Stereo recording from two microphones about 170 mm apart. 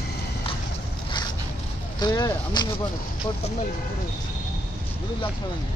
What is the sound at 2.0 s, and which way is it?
Speech, 25° left (ahead or behind).